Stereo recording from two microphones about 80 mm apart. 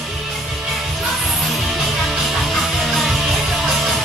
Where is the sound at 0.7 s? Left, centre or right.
Centre.